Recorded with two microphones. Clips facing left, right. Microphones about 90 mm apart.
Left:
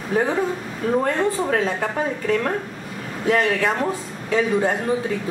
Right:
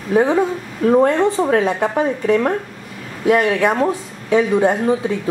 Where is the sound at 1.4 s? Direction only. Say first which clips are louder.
Right 5 dB; 25° right (ahead or behind).